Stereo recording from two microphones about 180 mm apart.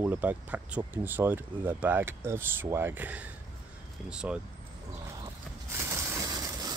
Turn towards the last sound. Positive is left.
turn(degrees=-20)  # may be behind; listen again after turning